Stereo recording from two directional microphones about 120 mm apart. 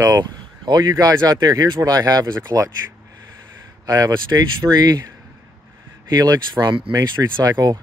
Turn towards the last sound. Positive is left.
turn(degrees=-30)  # may be behind; listen again after turning